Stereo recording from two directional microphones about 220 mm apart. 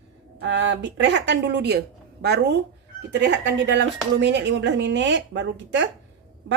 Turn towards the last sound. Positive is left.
turn(degrees=-55)  # may be behind; listen again after turning